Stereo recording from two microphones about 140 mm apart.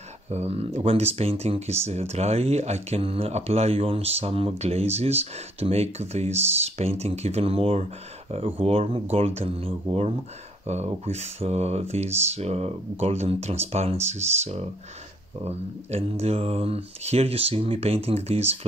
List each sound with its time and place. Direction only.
0.3 s speech: 50° right (ahead or behind)